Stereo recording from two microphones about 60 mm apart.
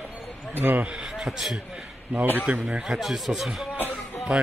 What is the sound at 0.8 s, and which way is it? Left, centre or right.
Speech, centre.